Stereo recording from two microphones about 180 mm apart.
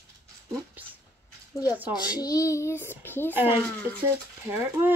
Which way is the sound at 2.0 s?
20° left (ahead or behind).